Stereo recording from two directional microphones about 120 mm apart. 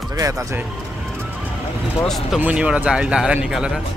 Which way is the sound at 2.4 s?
10° right (ahead or behind).